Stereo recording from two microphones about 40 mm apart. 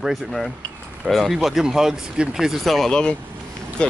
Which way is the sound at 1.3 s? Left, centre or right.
Centre.